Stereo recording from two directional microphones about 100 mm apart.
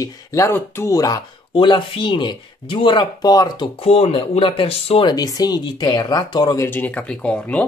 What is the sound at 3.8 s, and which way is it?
Speech, 75° left (ahead or behind).